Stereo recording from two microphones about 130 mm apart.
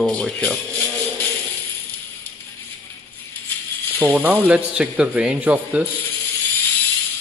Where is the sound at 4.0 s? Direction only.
10° right (ahead or behind).